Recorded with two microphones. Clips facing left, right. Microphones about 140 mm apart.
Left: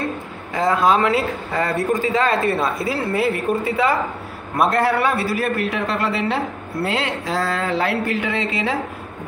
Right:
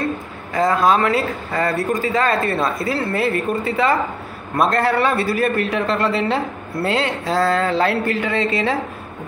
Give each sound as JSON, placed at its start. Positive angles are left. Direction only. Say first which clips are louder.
{"t": 0.6, "sound": "a man's voice", "louder": "right 1 dB", "side_deg": 15}